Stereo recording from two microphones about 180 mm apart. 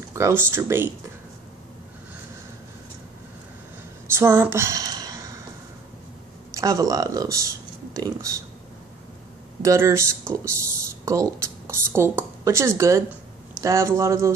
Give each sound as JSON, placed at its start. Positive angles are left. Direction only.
{"t": 0.1, "sound": "speech", "side_deg": -15}
{"t": 4.1, "sound": "a sound", "side_deg": -15}
{"t": 6.5, "sound": "speech", "side_deg": -20}
{"t": 9.6, "sound": "speech", "side_deg": -15}